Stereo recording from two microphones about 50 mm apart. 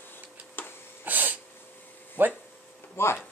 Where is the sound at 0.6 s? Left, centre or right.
Left.